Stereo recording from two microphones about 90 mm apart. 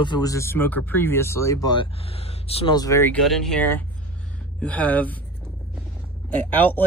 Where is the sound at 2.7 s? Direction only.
40° left (ahead or behind).